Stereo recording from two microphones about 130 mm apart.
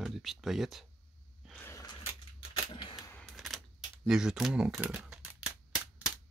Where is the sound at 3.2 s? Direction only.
Centre (ahead or behind).